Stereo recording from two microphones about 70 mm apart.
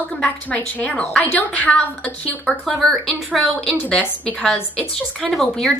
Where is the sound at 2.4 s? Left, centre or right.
Centre.